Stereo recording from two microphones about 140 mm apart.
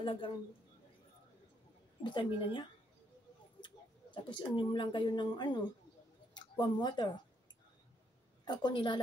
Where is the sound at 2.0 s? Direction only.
35° left (ahead or behind).